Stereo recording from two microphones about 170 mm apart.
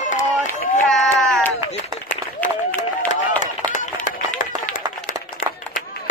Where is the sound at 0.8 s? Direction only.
Centre (ahead or behind).